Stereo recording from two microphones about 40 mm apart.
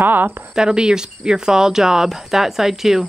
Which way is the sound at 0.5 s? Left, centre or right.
Centre.